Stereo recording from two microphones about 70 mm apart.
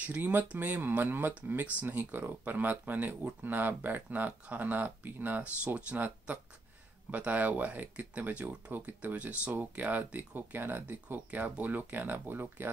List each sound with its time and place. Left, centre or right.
0.0 s speech: right